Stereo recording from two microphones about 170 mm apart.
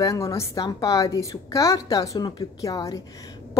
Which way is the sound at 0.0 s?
20° left (ahead or behind).